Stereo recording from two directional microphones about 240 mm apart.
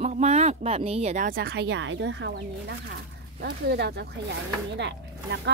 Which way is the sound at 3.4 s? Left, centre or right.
Right.